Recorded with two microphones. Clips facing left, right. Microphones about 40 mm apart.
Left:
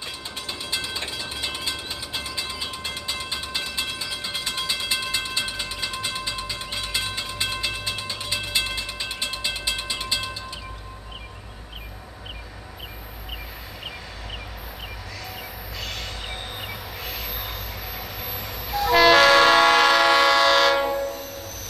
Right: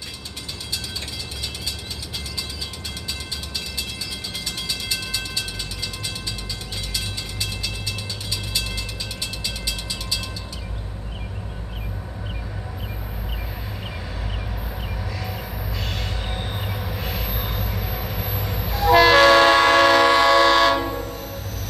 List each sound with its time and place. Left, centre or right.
0.7 s mechanisms: left
15.8 s train: centre